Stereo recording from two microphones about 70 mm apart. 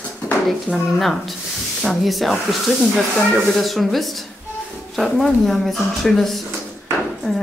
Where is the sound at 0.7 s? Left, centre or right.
Left.